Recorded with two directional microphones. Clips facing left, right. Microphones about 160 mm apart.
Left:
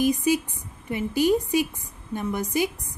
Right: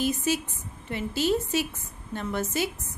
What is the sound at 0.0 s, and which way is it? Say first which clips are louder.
A woman's voice: left 5 dB; 15° left (ahead or behind).